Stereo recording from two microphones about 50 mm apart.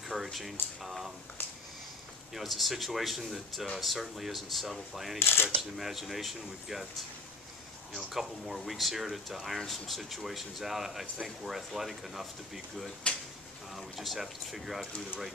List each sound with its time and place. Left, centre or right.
0.1 s speech: centre
1.4 s a sound: left
2.3 s speech: centre
5.2 s speech: left
5.6 s speech: centre
8.1 s speech: centre
13.0 s a sound: left
13.7 s speech: centre